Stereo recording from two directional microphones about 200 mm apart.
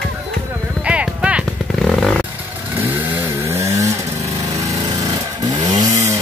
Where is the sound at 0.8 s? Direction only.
5° right (ahead or behind).